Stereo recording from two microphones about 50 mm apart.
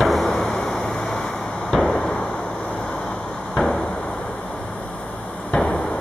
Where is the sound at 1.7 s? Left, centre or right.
Centre.